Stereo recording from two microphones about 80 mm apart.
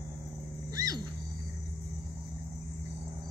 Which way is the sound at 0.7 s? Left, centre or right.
Right.